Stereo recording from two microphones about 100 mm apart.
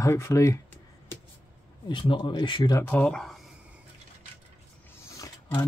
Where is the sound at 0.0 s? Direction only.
30° left (ahead or behind).